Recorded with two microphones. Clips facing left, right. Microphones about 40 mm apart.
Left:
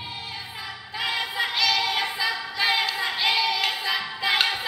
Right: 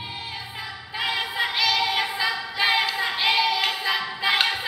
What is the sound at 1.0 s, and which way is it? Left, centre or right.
Music, centre.